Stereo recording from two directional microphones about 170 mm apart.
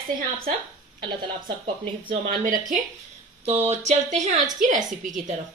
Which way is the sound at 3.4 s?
35° right (ahead or behind).